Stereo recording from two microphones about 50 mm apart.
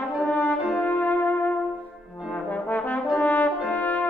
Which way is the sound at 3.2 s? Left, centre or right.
Left.